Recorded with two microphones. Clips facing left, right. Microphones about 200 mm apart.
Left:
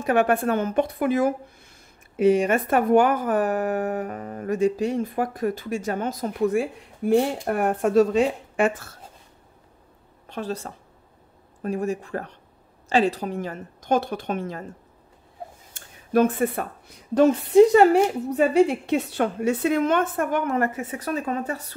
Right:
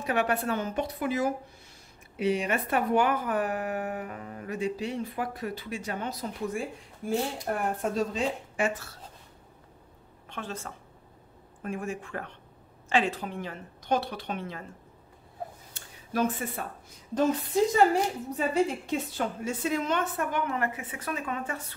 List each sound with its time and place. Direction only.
0.0 s speech: 50° left (ahead or behind)
6.4 s speech: 70° left (ahead or behind)
10.2 s speech: 35° left (ahead or behind)
15.7 s a sound: 55° left (ahead or behind)
17.1 s a woman's voice: 70° left (ahead or behind); by 21.6 s 35° left (ahead or behind)